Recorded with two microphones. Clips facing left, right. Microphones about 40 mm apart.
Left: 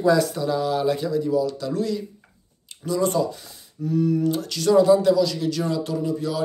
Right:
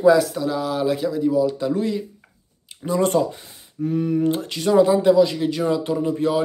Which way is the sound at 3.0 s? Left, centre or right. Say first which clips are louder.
Right 3 dB; right.